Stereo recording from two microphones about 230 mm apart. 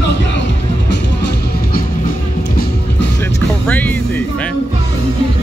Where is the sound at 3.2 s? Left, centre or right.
Centre.